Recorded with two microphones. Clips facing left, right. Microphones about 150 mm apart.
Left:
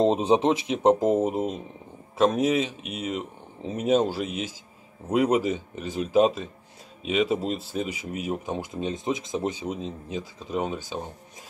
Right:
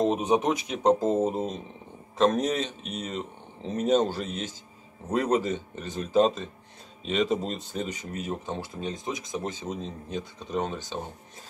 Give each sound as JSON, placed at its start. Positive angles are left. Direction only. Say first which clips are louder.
{"t": 0.0, "sound": "speech", "louder": "left 3 dB", "side_deg": 30}
{"t": 9.5, "sound": "speech", "louder": "left 3 dB", "side_deg": 10}